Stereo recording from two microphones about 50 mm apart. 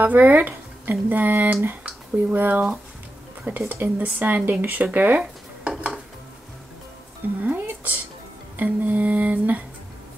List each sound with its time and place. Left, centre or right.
0.0 s speech: right
5.2 s dishes: centre
7.3 s music: right